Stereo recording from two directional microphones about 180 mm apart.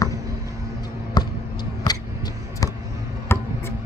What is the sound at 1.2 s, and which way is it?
Basketball bounce, 25° left (ahead or behind).